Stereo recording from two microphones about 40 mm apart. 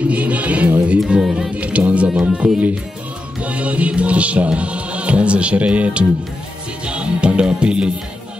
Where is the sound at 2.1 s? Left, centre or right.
Right.